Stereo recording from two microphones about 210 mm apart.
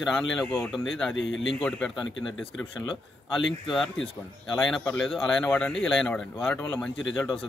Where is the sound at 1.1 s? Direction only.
60° left (ahead or behind).